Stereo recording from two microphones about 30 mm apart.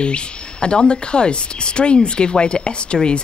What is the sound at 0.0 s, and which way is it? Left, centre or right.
Speech, left.